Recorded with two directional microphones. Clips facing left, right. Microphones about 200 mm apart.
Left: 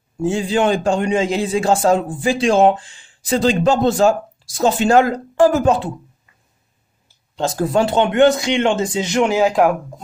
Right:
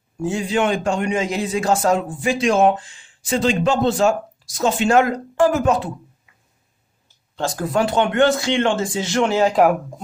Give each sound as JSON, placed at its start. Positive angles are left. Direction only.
{"t": 0.2, "sound": "a man's voice", "side_deg": 30}
{"t": 7.3, "sound": "speech", "side_deg": 25}